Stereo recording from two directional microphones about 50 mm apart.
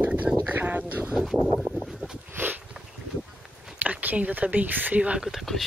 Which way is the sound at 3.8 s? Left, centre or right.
Right.